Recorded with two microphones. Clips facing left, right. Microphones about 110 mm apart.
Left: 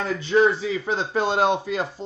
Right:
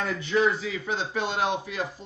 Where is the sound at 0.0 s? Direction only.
30° left (ahead or behind).